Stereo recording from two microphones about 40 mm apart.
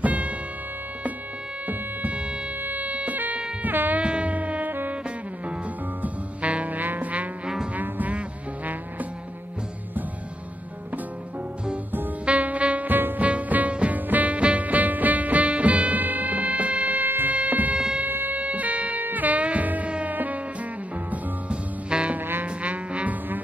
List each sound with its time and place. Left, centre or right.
0.0 s music: right
1.7 s music: right
4.0 s music: right
6.0 s music: right
12.3 s music: right
12.8 s music: right
13.2 s music: right
17.7 s a sound: right
18.0 s wind instrument: right
18.4 s music: right
21.1 s music: right